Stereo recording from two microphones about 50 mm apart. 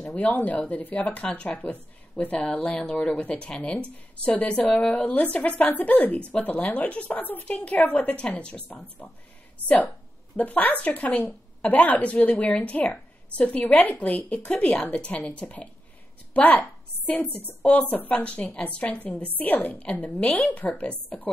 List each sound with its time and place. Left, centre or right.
0.0 s speech: left
9.0 s a woman's voice: left
9.6 s a woman's voice: right
10.3 s a woman's voice: left